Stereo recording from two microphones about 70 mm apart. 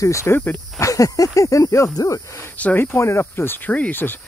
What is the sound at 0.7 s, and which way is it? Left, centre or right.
Speech, left.